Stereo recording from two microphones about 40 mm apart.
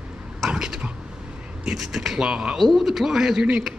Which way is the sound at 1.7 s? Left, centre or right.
Centre.